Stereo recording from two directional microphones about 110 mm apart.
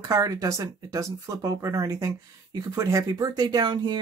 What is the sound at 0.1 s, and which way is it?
Speech, 30° right (ahead or behind).